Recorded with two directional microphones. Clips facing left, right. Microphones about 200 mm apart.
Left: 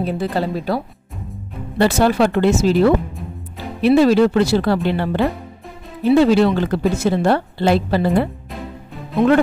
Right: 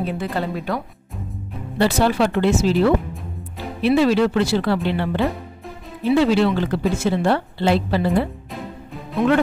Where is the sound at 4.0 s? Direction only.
40° left (ahead or behind).